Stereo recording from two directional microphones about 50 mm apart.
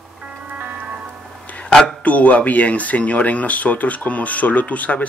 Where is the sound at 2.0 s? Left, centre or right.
Left.